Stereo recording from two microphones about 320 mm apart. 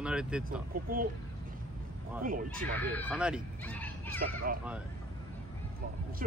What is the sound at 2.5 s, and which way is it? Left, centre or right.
Speech, centre.